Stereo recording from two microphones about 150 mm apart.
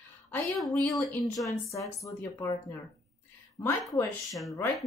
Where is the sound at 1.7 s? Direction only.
20° left (ahead or behind).